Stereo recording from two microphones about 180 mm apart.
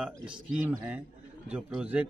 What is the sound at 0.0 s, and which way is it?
Speech, 10° right (ahead or behind).